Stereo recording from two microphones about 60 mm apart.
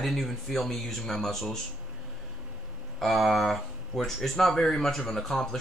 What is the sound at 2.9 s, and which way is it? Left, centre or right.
Speech, centre.